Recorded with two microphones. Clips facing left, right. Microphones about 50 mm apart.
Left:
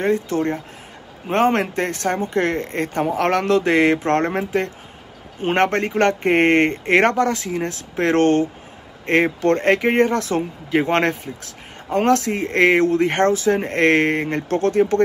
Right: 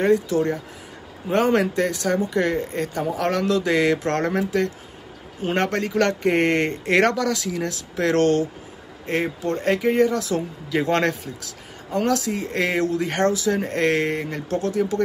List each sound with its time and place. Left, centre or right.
0.3 s speech: left
5.4 s speech: left
9.0 s speech: left